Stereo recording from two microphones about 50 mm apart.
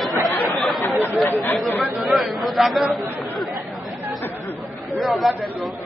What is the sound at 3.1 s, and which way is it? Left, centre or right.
Chatter, centre.